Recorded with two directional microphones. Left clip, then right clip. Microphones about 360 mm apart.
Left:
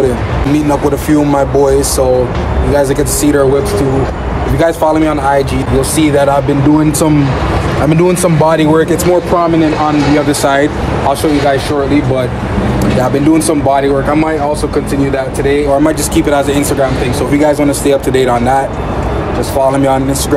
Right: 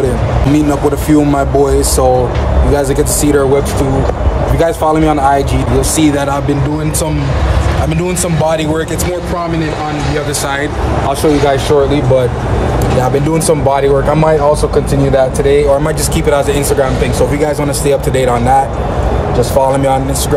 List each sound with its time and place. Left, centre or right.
0.6 s speech: centre
4.6 s speech: centre
8.5 s speech: centre
10.4 s speech: centre
13.3 s speech: centre